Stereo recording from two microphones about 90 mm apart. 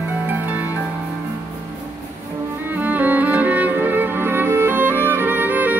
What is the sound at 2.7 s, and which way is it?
Music, 20° right (ahead or behind).